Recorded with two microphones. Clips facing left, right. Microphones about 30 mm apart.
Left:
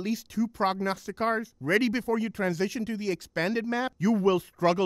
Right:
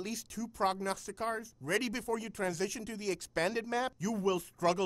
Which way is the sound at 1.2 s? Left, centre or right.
Left.